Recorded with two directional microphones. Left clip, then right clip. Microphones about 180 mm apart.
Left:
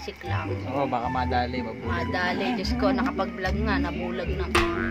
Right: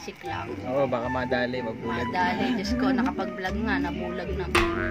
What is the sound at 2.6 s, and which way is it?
Speech, 15° left (ahead or behind).